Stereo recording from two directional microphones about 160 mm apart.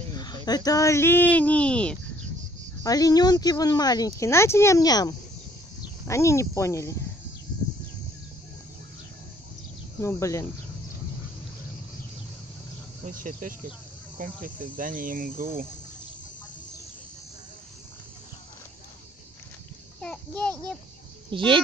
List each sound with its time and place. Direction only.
0.1 s a sound: 25° left (ahead or behind)
0.5 s speech: 25° left (ahead or behind); by 2.0 s 5° left (ahead or behind)
2.8 s speech: 25° left (ahead or behind)
9.9 s speech: 20° left (ahead or behind)
13.0 s speech: 55° right (ahead or behind)
20.0 s a child's voice: 5° left (ahead or behind)
21.3 s speech: 30° right (ahead or behind)